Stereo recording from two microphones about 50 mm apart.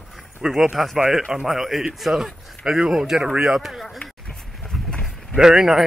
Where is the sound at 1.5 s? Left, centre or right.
Centre.